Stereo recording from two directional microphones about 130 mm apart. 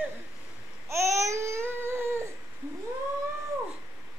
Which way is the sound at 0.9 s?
20° right (ahead or behind).